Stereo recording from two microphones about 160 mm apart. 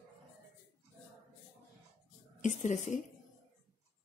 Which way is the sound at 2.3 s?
50° left (ahead or behind).